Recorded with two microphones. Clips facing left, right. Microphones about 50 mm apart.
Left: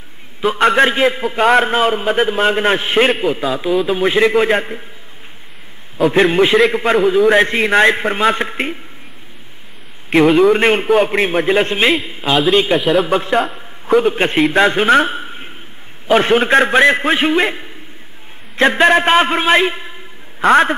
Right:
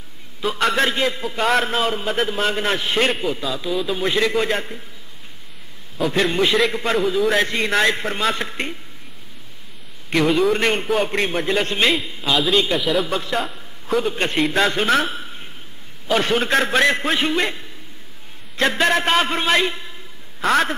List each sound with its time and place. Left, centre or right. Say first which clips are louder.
0.4 s a man's voice: left 7 dB; centre
6.0 s a man's voice: left 7 dB; left
10.1 s a man's voice: left 7 dB; centre; by 12.4 s left
12.7 s a man's voice: left 6 dB; centre
13.0 s a man's voice: left 7 dB; left
13.5 s a sound: left 8 dB; centre
14.0 s a man's voice: left 6 dB; left